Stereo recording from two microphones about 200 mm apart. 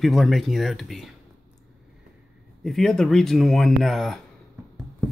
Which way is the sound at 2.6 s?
Centre (ahead or behind).